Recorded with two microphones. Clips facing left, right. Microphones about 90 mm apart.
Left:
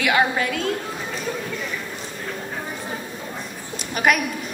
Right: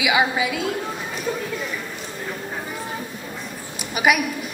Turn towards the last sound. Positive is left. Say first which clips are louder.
# right 1 dB
turn(degrees=-5)  # may be behind; listen again after turning